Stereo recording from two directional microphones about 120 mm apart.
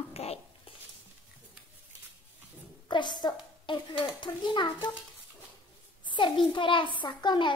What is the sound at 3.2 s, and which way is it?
A woman's voice, 40° left (ahead or behind).